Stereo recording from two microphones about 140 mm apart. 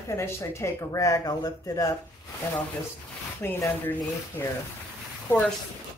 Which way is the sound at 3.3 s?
15° left (ahead or behind).